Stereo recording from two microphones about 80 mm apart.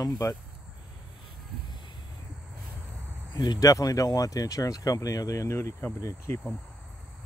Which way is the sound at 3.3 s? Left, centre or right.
Left.